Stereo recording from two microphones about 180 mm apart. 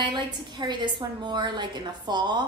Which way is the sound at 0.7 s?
25° right (ahead or behind).